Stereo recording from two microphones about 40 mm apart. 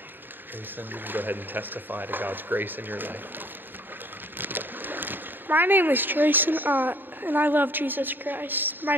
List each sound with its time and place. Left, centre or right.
0.7 s speech: right